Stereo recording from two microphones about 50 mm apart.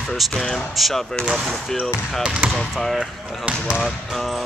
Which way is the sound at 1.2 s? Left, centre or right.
Centre.